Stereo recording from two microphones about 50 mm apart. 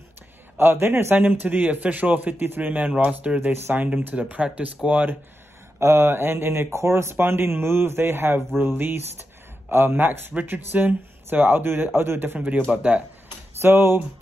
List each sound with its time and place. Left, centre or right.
0.6 s a man's voice: right
5.8 s speech: right
6.7 s speech: right
12.4 s speech: right
13.6 s speech: right